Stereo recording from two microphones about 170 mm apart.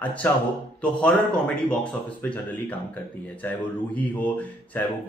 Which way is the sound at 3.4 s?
10° left (ahead or behind).